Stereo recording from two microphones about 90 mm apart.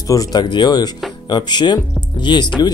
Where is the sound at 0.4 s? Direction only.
55° left (ahead or behind).